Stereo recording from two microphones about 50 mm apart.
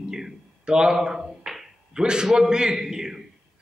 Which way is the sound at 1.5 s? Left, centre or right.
Centre.